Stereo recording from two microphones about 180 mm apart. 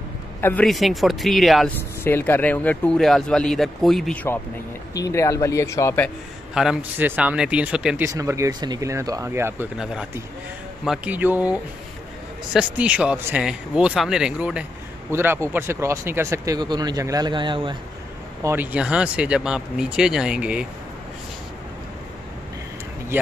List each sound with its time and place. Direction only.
0.4 s speech: 10° left (ahead or behind)
2.0 s speech: 10° left (ahead or behind)
4.9 s speech: 20° left (ahead or behind)
6.0 s speech: centre (ahead or behind)
8.0 s a man's voice: 15° right (ahead or behind)
12.5 s a man's voice: 5° right (ahead or behind); by 17.7 s 25° right (ahead or behind)
18.4 s speech: 10° right (ahead or behind)